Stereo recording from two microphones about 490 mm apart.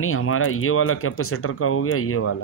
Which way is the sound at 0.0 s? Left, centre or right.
Left.